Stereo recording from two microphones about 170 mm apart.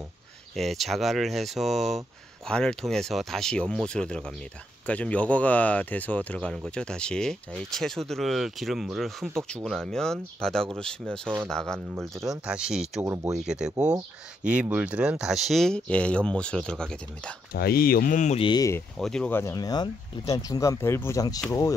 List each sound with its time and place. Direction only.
0.6 s speech: centre (ahead or behind)
13.0 s speech: 15° right (ahead or behind)
13.4 s speech: 5° right (ahead or behind)
17.6 s speech: 65° left (ahead or behind); by 18.4 s 45° left (ahead or behind)
18.4 s speech: 25° left (ahead or behind)
18.9 s speech: 5° left (ahead or behind); by 21.7 s 20° left (ahead or behind)